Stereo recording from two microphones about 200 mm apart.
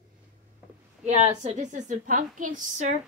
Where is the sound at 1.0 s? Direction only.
35° right (ahead or behind).